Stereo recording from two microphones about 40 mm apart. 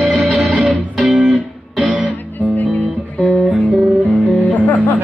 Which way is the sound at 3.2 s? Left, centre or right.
Centre.